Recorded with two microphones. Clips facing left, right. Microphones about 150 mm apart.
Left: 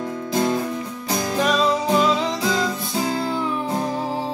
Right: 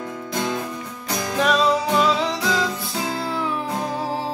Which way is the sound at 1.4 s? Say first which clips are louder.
Right 2 dB; centre (ahead or behind).